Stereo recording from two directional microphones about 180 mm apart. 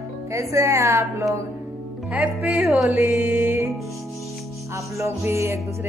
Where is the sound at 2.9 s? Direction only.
15° right (ahead or behind).